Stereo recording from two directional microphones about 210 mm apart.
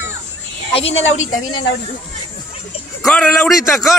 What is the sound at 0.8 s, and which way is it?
Speech, 65° left (ahead or behind).